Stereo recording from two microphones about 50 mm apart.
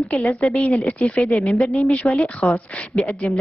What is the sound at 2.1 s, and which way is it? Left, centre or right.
A woman's voice, left.